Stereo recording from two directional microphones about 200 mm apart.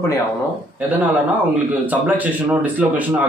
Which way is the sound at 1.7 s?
10° right (ahead or behind).